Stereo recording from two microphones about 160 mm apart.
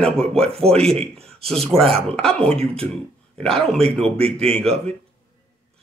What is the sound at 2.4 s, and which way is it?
Speech, 40° right (ahead or behind).